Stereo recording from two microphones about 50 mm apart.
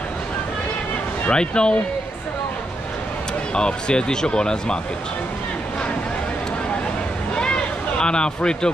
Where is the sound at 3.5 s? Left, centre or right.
Centre.